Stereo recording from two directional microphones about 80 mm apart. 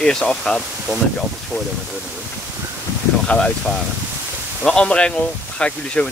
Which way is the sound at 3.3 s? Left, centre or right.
Centre.